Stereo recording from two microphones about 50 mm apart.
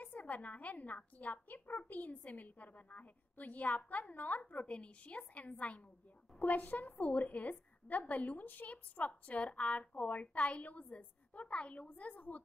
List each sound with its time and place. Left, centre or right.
0.0 s a woman's voice: left